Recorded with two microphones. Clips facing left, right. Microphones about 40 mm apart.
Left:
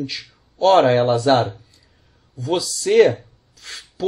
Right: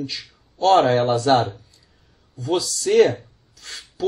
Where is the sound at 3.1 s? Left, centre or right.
Centre.